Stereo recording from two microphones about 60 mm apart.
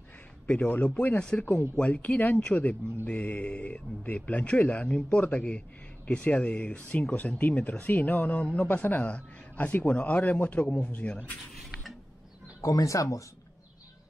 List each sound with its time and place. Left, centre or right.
0.5 s speech: left
12.6 s speech: left